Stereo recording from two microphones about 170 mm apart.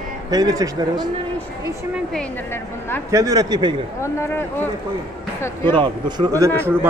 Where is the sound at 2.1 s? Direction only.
15° left (ahead or behind).